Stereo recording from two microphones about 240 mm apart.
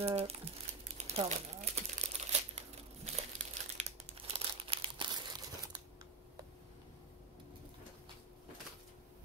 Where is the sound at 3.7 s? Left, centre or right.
Right.